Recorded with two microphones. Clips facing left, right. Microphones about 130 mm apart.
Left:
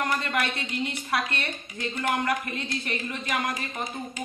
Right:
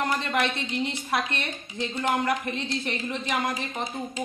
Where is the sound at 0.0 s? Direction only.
30° right (ahead or behind).